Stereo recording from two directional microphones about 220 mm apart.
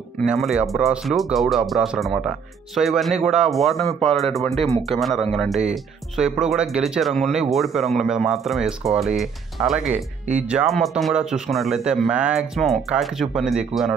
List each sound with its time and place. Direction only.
0.2 s speech: centre (ahead or behind)
4.6 s speech: 25° right (ahead or behind)
4.8 s speech: centre (ahead or behind)